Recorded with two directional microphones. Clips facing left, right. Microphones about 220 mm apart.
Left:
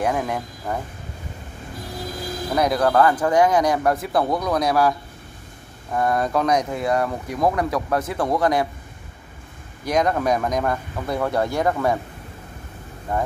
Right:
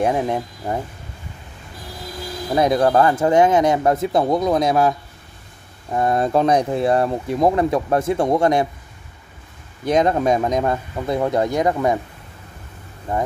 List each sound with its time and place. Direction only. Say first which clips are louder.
0.0 s speech: right 4 dB; 25° right (ahead or behind)
2.5 s speech: right 3 dB; 25° right (ahead or behind)
5.9 s speech: right 3 dB; 25° right (ahead or behind)
9.8 s speech: right 3 dB; 25° right (ahead or behind)